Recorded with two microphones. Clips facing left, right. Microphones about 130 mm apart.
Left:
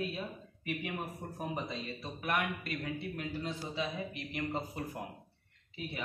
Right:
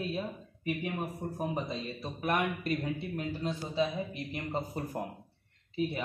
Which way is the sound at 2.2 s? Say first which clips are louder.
Right 4 dB; 35° right (ahead or behind).